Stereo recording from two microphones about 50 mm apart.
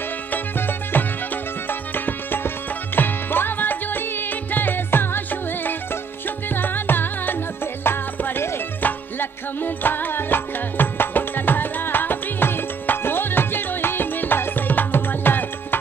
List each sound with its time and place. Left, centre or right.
0.3 s music: left